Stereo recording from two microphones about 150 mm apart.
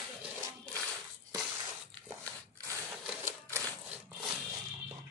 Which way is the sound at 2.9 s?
15° right (ahead or behind).